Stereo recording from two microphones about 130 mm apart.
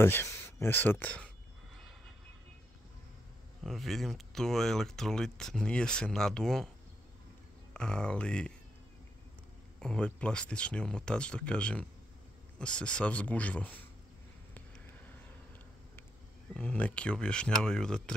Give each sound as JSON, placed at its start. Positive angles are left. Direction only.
{"t": 0.0, "sound": "speech", "side_deg": 20}
{"t": 3.6, "sound": "speech", "side_deg": 0}
{"t": 7.7, "sound": "speech", "side_deg": 5}
{"t": 9.8, "sound": "speech", "side_deg": 5}
{"t": 16.5, "sound": "speech", "side_deg": 10}